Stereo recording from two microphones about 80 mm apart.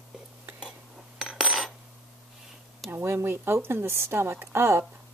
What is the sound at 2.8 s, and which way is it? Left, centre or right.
A woman's voice, right.